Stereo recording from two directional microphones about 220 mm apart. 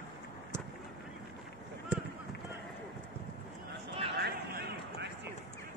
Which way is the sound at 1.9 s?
5° right (ahead or behind).